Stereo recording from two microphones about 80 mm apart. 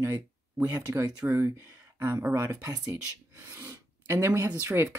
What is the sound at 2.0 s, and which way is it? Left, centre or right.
Speech, right.